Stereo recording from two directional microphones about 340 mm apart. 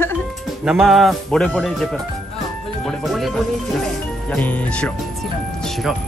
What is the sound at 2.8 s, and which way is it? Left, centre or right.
Music, centre.